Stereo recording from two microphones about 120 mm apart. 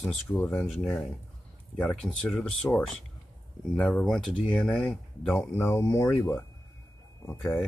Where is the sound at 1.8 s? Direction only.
5° left (ahead or behind).